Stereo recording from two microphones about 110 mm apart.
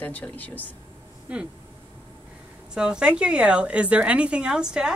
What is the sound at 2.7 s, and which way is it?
A woman's voice, 10° right (ahead or behind).